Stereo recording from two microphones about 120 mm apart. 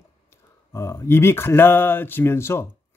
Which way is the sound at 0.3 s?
25° left (ahead or behind).